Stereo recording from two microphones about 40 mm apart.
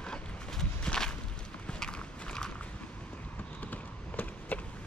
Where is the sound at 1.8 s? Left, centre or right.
Centre.